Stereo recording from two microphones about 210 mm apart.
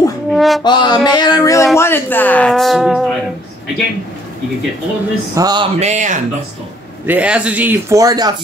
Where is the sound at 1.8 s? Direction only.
10° left (ahead or behind).